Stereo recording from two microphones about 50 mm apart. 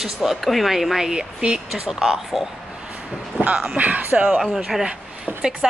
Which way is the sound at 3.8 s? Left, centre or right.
Right.